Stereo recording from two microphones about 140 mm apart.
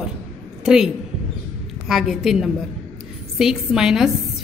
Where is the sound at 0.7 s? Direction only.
5° right (ahead or behind).